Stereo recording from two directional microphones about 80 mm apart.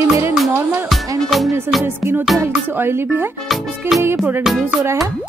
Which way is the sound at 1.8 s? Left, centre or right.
Right.